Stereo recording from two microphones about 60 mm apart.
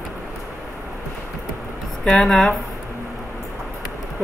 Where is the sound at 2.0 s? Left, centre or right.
Centre.